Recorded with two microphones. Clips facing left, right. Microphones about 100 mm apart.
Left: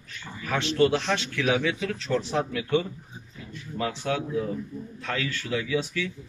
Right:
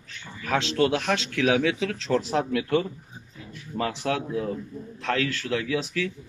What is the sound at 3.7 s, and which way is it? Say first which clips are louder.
Speech: right 1 dB; 65° right (ahead or behind).